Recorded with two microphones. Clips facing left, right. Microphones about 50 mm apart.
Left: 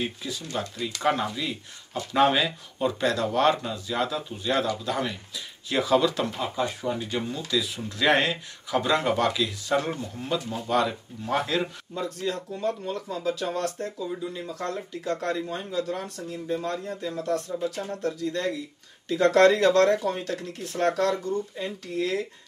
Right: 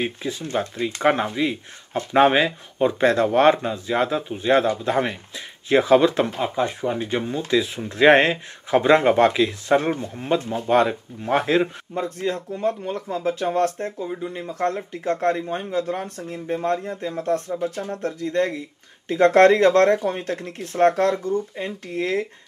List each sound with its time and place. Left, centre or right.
0.0 s speech: right